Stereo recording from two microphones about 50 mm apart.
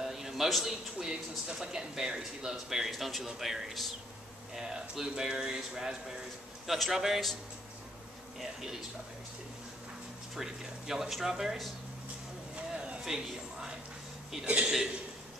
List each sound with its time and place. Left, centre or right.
0.0 s a sound: centre
1.5 s speech: centre
8.4 s speech: centre
10.3 s speech: centre
12.5 s a sound: right
13.0 s speech: centre
14.4 s speech: right